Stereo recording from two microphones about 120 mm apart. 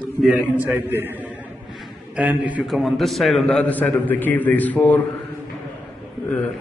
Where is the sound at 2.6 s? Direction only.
Centre (ahead or behind).